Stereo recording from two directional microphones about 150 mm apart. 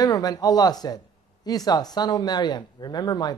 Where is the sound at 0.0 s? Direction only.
25° left (ahead or behind).